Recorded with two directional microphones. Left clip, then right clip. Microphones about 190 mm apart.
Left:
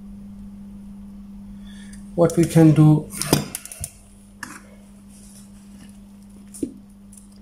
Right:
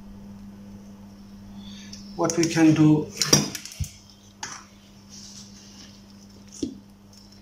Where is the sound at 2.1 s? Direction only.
30° left (ahead or behind).